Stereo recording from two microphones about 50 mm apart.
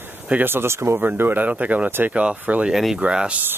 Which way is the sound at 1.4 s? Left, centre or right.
Right.